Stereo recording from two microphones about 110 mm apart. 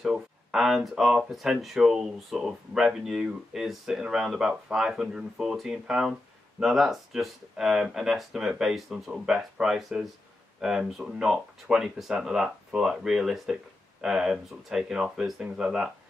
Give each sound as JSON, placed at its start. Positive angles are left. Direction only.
{"t": 0.0, "sound": "speech", "side_deg": -5}